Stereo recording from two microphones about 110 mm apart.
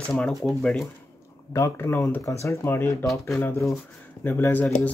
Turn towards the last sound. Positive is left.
turn(degrees=10)  # may be behind; listen again after turning